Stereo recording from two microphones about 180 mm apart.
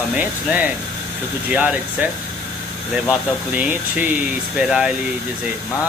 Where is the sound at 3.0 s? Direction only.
5° right (ahead or behind).